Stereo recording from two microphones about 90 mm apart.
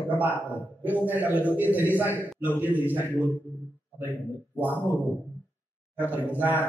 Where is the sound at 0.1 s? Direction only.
20° right (ahead or behind).